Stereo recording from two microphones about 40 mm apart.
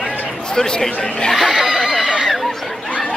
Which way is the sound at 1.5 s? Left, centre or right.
Centre.